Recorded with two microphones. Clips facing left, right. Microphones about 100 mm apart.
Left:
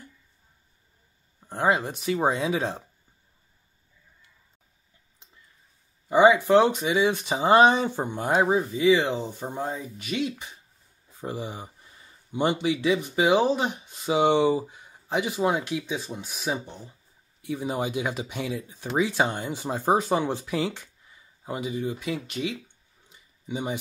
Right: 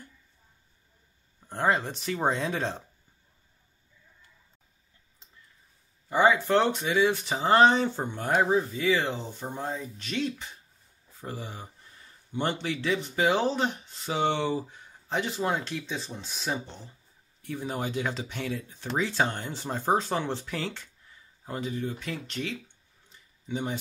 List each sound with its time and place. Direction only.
1.4 s speech: 10° left (ahead or behind)
6.0 s speech: 15° left (ahead or behind)
23.0 s a sound: 15° left (ahead or behind)